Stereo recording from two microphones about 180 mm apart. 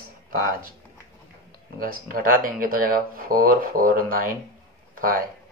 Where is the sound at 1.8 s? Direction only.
50° right (ahead or behind).